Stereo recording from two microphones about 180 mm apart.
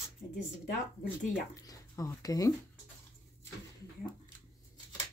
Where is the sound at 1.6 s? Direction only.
20° left (ahead or behind).